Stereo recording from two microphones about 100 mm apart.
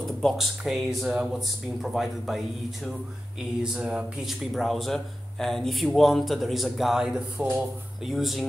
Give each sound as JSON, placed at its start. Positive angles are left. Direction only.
{"t": 0.2, "sound": "speech", "side_deg": 0}